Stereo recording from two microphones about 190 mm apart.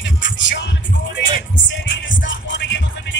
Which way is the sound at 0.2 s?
75° left (ahead or behind).